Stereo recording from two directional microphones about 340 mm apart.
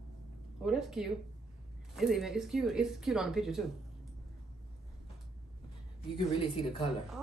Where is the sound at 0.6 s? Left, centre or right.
Centre.